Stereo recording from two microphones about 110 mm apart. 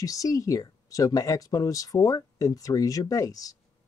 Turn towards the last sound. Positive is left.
turn(degrees=30)  # may be behind; listen again after turning